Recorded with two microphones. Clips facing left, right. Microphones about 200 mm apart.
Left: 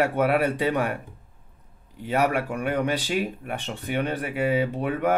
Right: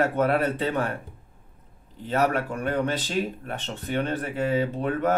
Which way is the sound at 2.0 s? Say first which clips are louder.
Left 1 dB; 10° left (ahead or behind).